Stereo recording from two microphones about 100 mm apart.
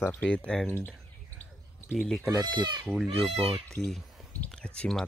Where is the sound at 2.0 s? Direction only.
5° left (ahead or behind).